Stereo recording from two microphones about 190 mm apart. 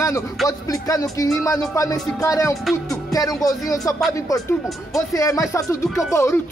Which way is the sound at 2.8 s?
20° left (ahead or behind).